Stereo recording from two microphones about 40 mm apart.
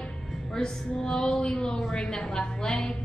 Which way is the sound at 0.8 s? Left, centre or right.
Centre.